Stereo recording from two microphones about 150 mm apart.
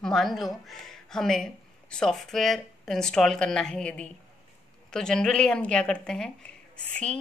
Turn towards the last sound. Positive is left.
turn(degrees=5)  # may be behind; listen again after turning